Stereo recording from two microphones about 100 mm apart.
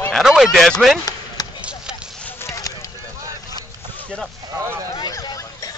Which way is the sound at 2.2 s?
30° left (ahead or behind).